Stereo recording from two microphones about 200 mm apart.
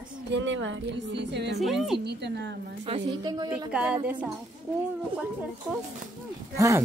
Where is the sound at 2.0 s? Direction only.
60° right (ahead or behind).